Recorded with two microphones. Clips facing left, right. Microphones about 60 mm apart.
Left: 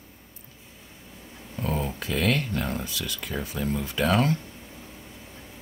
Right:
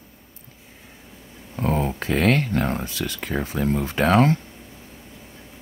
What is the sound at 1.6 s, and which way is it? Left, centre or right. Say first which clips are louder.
Speech: right 6 dB; right.